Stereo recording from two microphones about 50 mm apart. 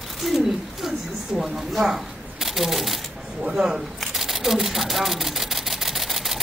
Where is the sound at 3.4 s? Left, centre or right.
Centre.